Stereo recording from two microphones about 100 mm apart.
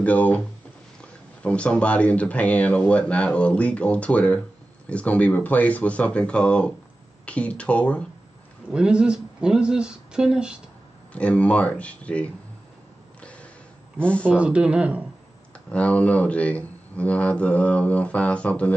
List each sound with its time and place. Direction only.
0.0 s speech: 15° left (ahead or behind)
1.4 s speech: 10° left (ahead or behind)
8.7 s speech: 10° right (ahead or behind)
11.1 s speech: 10° left (ahead or behind)
13.2 s a sound: 10° left (ahead or behind)
14.2 s speech: 10° right (ahead or behind)
15.7 s speech: 15° left (ahead or behind)